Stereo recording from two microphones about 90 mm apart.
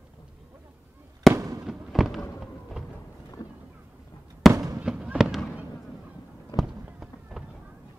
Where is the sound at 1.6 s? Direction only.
5° right (ahead or behind).